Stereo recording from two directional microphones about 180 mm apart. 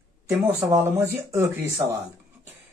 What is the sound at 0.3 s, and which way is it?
Speech, 20° right (ahead or behind).